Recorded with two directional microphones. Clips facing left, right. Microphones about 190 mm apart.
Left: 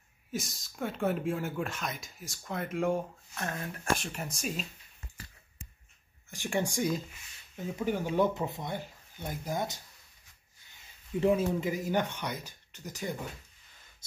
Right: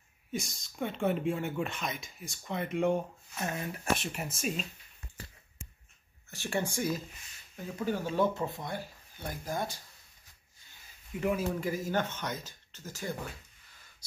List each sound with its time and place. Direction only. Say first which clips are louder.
0.3 s speech: even; centre (ahead or behind)
6.3 s speech: left 2 dB; 15° left (ahead or behind)
11.1 s speech: left 4 dB; 30° left (ahead or behind)